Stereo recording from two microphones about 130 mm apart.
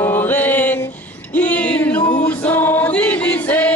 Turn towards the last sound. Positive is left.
turn(degrees=10)  # may be behind; listen again after turning